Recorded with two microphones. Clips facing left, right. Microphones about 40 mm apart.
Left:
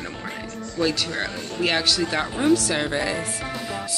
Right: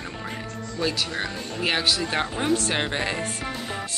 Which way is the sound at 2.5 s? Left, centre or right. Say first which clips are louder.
Left 4 dB; right.